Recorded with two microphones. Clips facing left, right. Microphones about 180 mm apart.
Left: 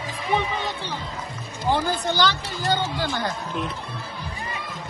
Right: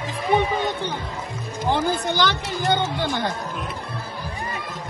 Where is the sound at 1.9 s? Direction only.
15° right (ahead or behind).